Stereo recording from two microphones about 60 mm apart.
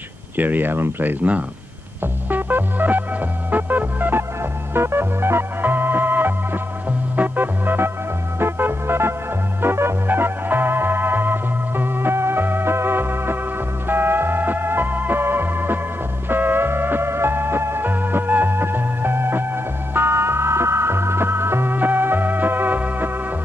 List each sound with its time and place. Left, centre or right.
0.4 s speech: right
3.5 s music: right
4.4 s organ: right
7.2 s music: right
13.8 s organ: right
16.3 s music: right